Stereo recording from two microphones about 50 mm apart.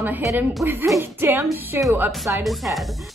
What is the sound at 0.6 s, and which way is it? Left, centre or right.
Speech, centre.